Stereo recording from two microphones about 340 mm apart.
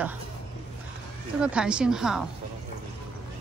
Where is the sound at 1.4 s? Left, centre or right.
Centre.